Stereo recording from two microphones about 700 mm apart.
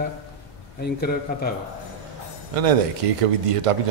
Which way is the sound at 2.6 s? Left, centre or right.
Right.